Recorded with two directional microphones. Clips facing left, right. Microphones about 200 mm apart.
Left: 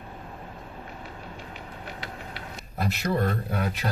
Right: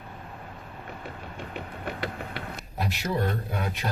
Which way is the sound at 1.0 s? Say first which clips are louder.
Right 2 dB; 60° right (ahead or behind).